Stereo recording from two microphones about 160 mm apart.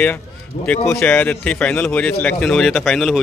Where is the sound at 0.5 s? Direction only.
50° left (ahead or behind).